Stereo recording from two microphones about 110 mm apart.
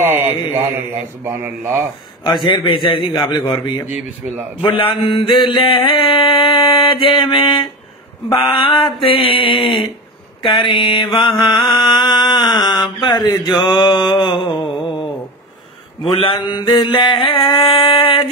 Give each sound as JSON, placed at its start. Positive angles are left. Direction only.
{"t": 0.0, "sound": "a man's voice", "side_deg": -20}
{"t": 2.4, "sound": "mantra", "side_deg": 50}
{"t": 4.2, "sound": "a man's voice", "side_deg": -15}
{"t": 5.0, "sound": "mantra", "side_deg": 50}
{"t": 10.7, "sound": "mantra", "side_deg": 45}
{"t": 11.7, "sound": "speech", "side_deg": 45}
{"t": 16.1, "sound": "mantra", "side_deg": 50}